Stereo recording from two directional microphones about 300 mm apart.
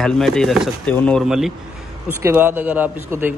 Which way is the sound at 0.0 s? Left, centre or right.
Centre.